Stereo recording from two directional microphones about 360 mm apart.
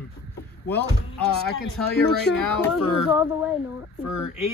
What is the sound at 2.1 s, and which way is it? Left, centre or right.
Speech, left.